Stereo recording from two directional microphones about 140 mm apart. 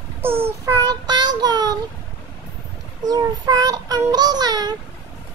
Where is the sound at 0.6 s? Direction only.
25° right (ahead or behind).